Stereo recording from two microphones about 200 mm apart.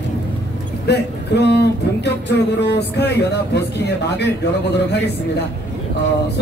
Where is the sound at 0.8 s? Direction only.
55° left (ahead or behind).